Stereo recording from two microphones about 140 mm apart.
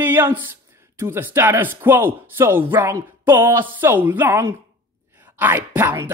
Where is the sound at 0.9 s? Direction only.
15° right (ahead or behind).